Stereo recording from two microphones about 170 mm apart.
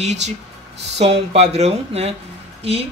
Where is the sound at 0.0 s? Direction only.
40° right (ahead or behind).